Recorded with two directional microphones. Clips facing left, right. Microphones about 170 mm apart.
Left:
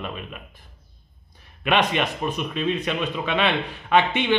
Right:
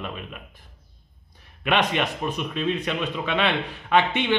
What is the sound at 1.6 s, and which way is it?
Speech, 15° left (ahead or behind).